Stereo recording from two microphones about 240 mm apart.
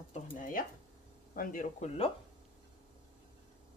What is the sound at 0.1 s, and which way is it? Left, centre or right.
Speech, left.